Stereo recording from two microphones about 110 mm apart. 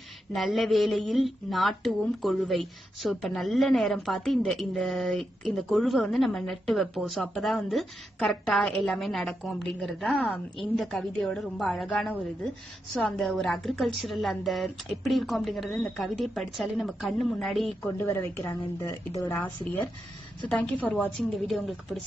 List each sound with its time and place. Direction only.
0.3 s a woman's voice: centre (ahead or behind)
17.8 s speech: 20° left (ahead or behind)
20.4 s a woman's voice: 10° left (ahead or behind)